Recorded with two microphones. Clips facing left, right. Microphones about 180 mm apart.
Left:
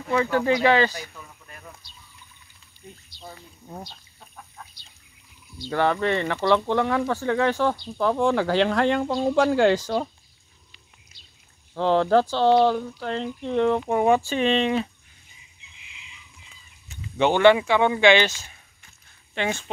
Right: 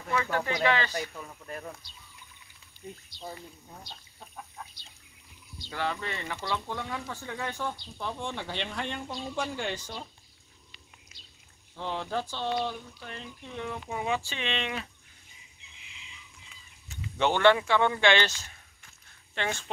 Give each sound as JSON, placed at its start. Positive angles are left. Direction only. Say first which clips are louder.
{"t": 0.1, "sound": "speech", "louder": "left 8 dB", "side_deg": 35}
{"t": 5.7, "sound": "speech", "louder": "left 11 dB", "side_deg": 65}
{"t": 11.7, "sound": "speech", "louder": "left 14 dB", "side_deg": 90}
{"t": 17.2, "sound": "speech", "louder": "left 6 dB", "side_deg": 15}